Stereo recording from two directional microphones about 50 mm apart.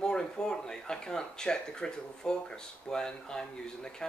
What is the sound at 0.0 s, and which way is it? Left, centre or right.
Speech, centre.